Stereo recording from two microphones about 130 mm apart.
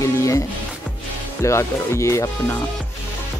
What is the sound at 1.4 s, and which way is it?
Speech, 20° left (ahead or behind).